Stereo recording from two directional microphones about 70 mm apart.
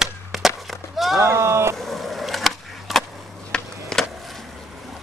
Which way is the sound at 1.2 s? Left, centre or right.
Right.